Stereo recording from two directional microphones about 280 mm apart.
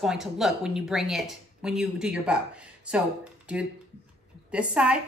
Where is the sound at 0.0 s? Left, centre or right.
Centre.